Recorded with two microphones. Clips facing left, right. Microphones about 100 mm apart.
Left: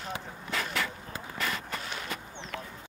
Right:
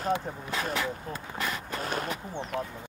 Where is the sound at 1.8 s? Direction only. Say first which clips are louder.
Right 6 dB; 45° right (ahead or behind).